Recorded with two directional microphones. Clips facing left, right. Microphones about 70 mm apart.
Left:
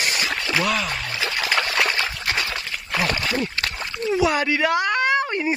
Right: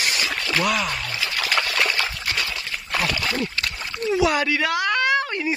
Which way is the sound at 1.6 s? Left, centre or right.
Left.